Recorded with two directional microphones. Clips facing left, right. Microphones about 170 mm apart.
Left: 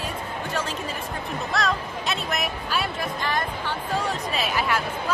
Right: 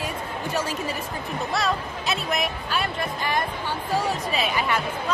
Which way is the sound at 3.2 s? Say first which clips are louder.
Right 1 dB; 10° right (ahead or behind).